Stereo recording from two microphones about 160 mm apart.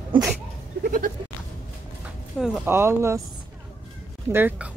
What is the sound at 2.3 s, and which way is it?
Speech, 5° right (ahead or behind).